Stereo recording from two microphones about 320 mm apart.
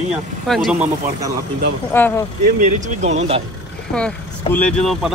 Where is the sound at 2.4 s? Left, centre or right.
Right.